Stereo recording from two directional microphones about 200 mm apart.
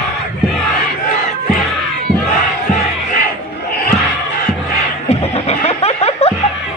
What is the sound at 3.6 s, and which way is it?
Slam, 50° left (ahead or behind).